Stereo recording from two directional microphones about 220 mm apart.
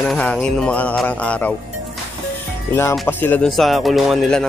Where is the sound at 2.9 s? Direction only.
5° left (ahead or behind).